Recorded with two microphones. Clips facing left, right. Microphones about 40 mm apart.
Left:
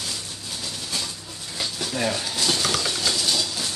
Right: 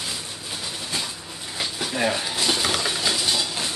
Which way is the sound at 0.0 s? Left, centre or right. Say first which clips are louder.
Right 1 dB; centre.